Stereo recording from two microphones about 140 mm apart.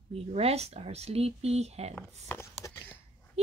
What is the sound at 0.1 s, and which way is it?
Speech, 45° right (ahead or behind).